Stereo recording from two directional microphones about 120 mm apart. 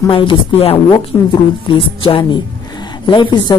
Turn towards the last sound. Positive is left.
turn(degrees=40)  # may be behind; listen again after turning